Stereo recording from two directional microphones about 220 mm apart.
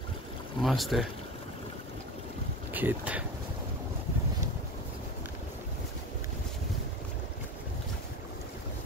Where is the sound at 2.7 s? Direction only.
5° right (ahead or behind).